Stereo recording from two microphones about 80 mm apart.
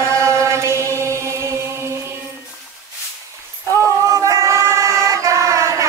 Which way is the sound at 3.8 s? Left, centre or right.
Right.